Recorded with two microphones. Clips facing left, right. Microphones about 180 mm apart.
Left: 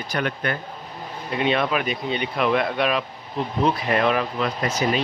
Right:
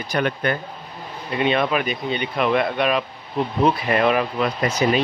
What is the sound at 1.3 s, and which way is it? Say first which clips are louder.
Speech: right 2 dB; centre (ahead or behind).